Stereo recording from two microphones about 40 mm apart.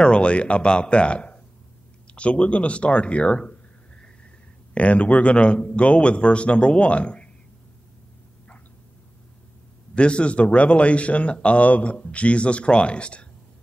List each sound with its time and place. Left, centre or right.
0.0 s speech: left
4.7 s speech: left
9.9 s speech: left